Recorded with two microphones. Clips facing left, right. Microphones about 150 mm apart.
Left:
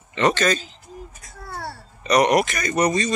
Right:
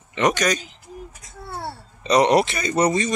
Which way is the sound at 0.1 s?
15° right (ahead or behind).